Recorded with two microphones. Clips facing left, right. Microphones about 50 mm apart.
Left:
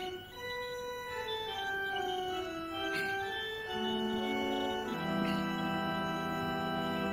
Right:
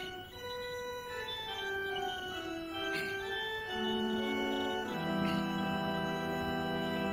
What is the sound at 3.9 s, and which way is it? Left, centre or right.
Music, left.